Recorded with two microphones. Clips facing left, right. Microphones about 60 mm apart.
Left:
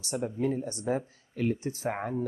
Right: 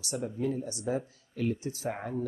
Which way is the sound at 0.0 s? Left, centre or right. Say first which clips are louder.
Left 2 dB; left.